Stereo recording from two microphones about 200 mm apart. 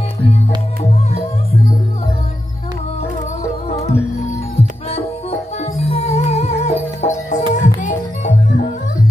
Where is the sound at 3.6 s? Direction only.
30° left (ahead or behind).